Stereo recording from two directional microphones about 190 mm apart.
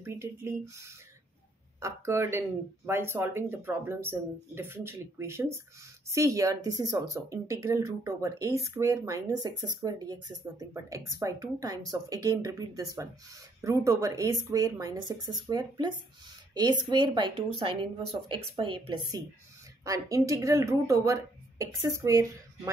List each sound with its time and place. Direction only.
0.0 s speech: 15° right (ahead or behind)